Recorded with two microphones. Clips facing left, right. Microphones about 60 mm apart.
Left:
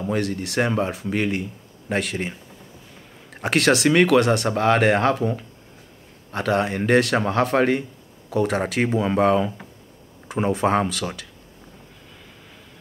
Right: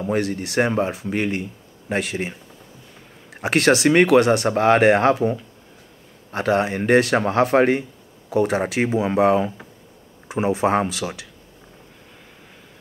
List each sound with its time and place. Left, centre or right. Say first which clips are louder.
0.2 s a man's voice: right 2 dB; centre
3.3 s speech: right 2 dB; centre
4.5 s a man's voice: right 3 dB; centre
6.3 s a man's voice: right 2 dB; centre